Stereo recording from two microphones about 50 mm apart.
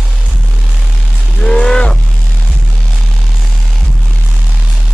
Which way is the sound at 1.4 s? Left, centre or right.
Centre.